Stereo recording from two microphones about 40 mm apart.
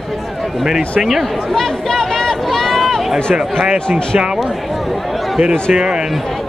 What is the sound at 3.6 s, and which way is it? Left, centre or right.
Speech, right.